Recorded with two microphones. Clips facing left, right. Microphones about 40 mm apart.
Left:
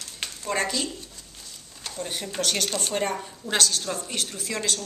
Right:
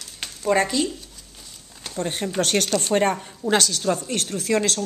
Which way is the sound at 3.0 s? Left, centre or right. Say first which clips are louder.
Right 6 dB; right.